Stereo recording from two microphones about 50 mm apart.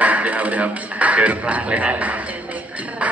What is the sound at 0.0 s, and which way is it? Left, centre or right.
Speech, right.